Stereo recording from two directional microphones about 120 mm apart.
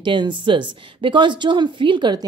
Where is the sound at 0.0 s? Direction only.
40° right (ahead or behind).